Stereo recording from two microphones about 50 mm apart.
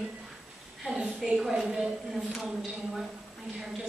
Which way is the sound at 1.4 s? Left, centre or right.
Centre.